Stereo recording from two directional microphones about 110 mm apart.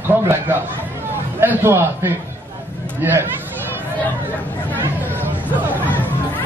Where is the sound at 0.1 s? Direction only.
20° right (ahead or behind).